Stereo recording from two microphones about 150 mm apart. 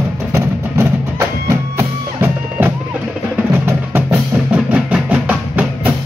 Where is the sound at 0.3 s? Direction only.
20° right (ahead or behind).